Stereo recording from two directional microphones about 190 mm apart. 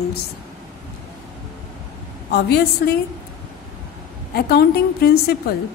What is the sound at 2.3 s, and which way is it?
Speech, 60° left (ahead or behind).